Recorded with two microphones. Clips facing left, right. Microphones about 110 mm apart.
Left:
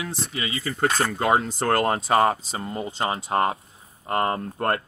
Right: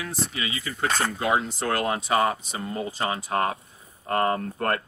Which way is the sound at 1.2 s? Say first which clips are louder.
Left 3 dB; 45° left (ahead or behind).